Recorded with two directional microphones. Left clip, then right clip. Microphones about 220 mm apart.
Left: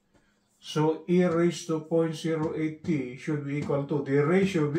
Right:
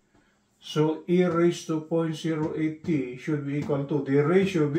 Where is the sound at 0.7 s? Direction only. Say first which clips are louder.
Right 1 dB; 10° left (ahead or behind).